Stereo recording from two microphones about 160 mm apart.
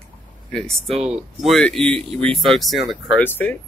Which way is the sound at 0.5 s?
Centre (ahead or behind).